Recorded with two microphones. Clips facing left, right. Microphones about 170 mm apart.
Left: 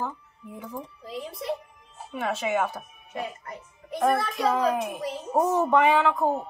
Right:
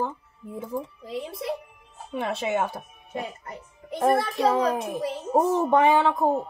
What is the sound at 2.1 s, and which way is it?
A child's voice, 35° right (ahead or behind).